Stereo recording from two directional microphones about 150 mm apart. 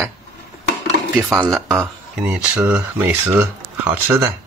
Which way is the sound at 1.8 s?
15° right (ahead or behind).